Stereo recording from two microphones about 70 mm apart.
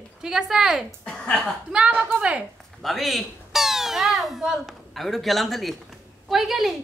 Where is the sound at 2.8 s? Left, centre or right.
Centre.